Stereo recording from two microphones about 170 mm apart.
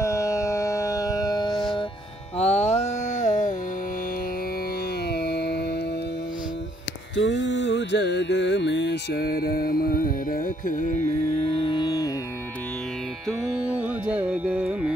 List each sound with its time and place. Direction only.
0.0 s civil defense siren: 20° left (ahead or behind)
2.3 s music: 40° left (ahead or behind)
5.1 s music: 70° left (ahead or behind)
7.2 s music: 90° left; by 11.0 s 50° left (ahead or behind)
11.4 s music: 30° left (ahead or behind)
13.3 s carnatic music: 5° right (ahead or behind)